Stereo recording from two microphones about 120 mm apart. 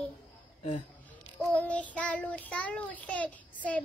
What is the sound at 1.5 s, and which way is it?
Child singing, 10° left (ahead or behind).